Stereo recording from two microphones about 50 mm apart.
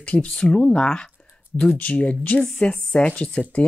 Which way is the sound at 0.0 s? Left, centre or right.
Left.